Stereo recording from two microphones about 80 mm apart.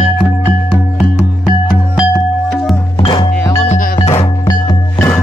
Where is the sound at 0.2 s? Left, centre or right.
Centre.